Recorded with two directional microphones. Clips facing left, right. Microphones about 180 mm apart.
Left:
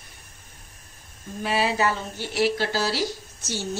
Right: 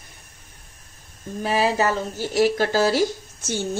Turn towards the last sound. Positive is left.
turn(degrees=-50)  # may be behind; listen again after turning